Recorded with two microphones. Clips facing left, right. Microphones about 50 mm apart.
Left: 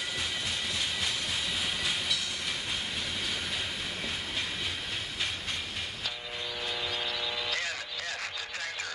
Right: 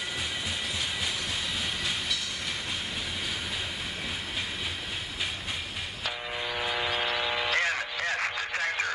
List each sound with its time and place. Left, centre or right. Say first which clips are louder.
6.6 s vehicle: right 5 dB; right